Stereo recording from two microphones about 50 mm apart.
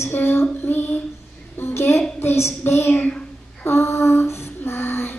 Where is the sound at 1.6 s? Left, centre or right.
Left.